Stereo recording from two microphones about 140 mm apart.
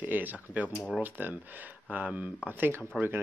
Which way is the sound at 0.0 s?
15° right (ahead or behind).